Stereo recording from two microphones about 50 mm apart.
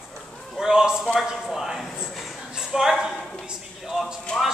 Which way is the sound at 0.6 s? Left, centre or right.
Centre.